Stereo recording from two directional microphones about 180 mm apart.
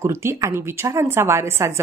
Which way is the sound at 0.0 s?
15° right (ahead or behind).